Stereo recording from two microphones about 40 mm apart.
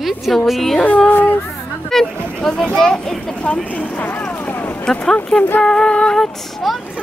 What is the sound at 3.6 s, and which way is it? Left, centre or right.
Speech, left.